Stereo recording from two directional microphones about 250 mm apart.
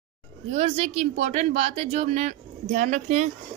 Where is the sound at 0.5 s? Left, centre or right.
Right.